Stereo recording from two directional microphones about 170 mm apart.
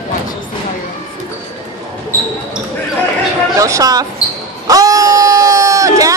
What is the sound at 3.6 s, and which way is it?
Speech, 20° right (ahead or behind).